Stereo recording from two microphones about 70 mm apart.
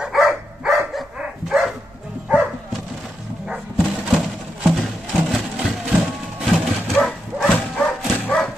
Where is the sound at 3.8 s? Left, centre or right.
Centre.